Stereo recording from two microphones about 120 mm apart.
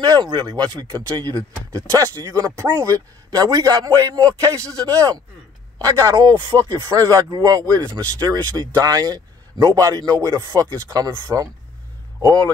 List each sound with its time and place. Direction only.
0.0 s speech: 35° right (ahead or behind)